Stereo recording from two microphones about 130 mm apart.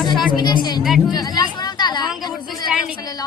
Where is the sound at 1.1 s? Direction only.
30° left (ahead or behind).